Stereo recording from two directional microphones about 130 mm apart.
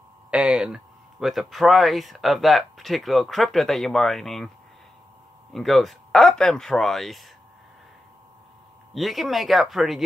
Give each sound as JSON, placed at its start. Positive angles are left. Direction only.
{"t": 0.3, "sound": "a sound", "side_deg": -5}
{"t": 1.2, "sound": "speech", "side_deg": 0}
{"t": 5.5, "sound": "speech", "side_deg": 0}
{"t": 8.9, "sound": "speech", "side_deg": 0}